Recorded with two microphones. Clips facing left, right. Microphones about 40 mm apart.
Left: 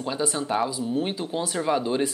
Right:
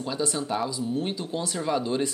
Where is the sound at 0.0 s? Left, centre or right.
Centre.